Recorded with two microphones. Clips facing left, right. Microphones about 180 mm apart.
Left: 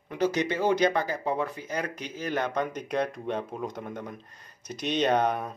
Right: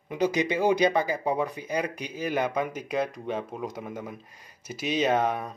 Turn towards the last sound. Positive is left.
turn(degrees=0)  # may be behind; listen again after turning